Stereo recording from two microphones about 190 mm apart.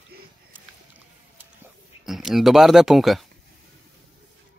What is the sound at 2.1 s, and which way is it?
Speech, centre (ahead or behind).